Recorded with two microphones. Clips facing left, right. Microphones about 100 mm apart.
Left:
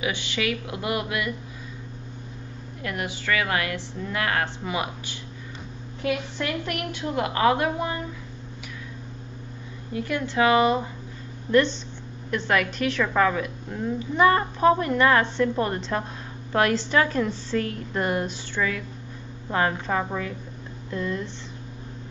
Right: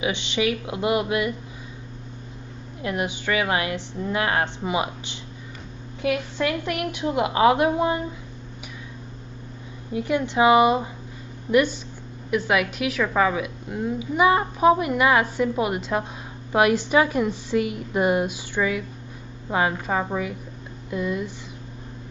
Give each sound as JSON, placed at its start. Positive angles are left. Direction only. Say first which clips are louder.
{"t": 0.0, "sound": "a woman's voice", "louder": "right 4 dB", "side_deg": -20}
{"t": 2.8, "sound": "a woman's voice", "louder": "right 4 dB", "side_deg": -20}
{"t": 9.9, "sound": "a woman's voice", "louder": "right 3 dB", "side_deg": -20}
{"t": 12.3, "sound": "a woman's voice", "louder": "right 2 dB", "side_deg": -10}